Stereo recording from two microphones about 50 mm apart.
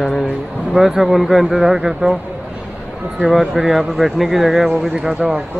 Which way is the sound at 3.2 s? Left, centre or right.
Centre.